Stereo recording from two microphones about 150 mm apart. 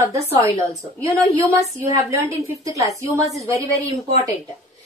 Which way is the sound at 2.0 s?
20° right (ahead or behind).